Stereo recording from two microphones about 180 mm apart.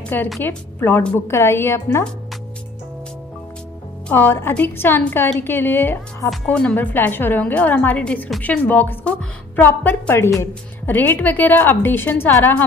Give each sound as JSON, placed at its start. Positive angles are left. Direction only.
{"t": 0.4, "sound": "a woman's voice", "side_deg": 10}
{"t": 4.1, "sound": "a woman's voice", "side_deg": 10}